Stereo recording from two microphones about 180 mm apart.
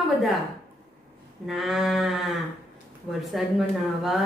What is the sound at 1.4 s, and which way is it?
A woman's voice, centre (ahead or behind).